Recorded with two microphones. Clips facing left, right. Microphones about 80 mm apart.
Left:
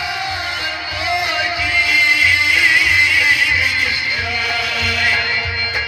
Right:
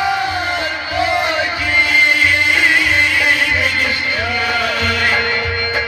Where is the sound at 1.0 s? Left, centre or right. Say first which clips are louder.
Right 3 dB; right.